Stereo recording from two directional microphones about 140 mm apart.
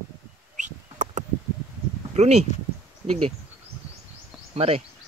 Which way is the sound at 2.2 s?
50° right (ahead or behind).